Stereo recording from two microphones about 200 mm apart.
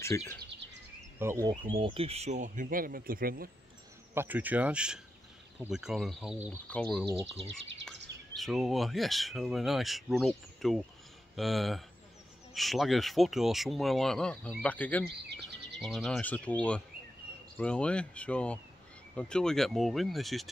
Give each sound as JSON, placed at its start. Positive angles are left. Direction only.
{"t": 0.0, "sound": "speech", "side_deg": 15}
{"t": 1.2, "sound": "speech", "side_deg": -15}
{"t": 1.5, "sound": "speech", "side_deg": -25}
{"t": 4.1, "sound": "speech", "side_deg": -10}
{"t": 7.4, "sound": "speech", "side_deg": -65}
{"t": 8.4, "sound": "speech", "side_deg": 0}